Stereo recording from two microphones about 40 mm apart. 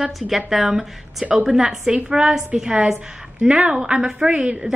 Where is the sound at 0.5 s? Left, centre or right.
Centre.